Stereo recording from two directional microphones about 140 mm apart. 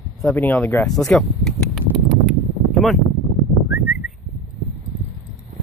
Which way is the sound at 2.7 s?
Centre (ahead or behind).